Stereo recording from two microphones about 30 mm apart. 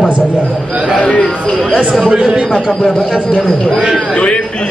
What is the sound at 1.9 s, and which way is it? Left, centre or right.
Speech, right.